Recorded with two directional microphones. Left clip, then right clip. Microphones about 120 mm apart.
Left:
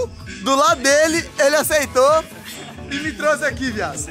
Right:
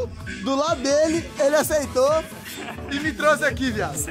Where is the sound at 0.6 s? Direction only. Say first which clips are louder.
Left 6 dB; 15° right (ahead or behind).